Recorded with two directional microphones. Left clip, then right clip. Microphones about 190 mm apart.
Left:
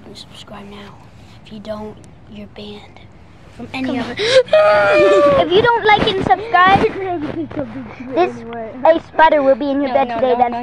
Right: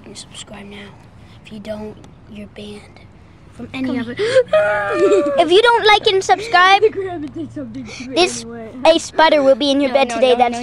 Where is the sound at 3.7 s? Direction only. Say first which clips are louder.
Left 2 dB; 35° right (ahead or behind).